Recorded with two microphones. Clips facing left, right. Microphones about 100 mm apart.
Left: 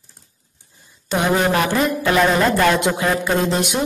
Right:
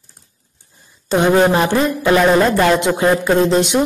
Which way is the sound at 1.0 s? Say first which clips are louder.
Right 5 dB; 25° right (ahead or behind).